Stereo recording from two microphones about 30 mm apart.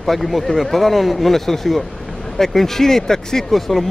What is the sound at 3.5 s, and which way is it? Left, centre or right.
Speech, centre.